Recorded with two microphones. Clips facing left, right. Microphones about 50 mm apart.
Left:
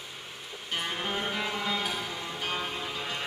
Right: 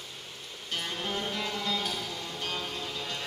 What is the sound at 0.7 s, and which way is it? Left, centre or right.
Music, centre.